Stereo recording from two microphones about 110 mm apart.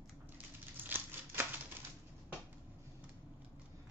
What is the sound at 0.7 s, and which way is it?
Scissors, 20° right (ahead or behind).